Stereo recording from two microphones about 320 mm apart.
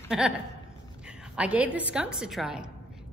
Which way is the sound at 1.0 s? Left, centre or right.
Centre.